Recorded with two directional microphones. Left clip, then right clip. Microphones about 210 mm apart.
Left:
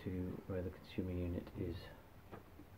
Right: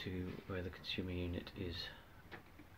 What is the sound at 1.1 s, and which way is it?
Speech, 5° right (ahead or behind).